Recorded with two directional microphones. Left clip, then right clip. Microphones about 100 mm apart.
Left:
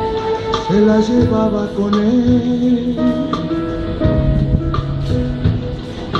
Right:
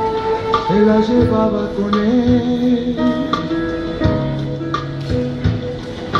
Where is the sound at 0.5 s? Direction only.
45° left (ahead or behind).